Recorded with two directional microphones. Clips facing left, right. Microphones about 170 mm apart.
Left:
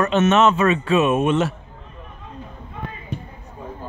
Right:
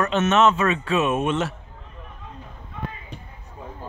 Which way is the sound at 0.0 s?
20° left (ahead or behind).